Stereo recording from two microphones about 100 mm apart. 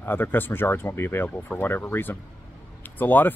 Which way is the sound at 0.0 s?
20° left (ahead or behind).